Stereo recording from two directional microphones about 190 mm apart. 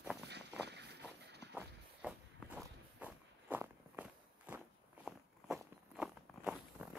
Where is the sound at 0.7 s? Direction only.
60° right (ahead or behind).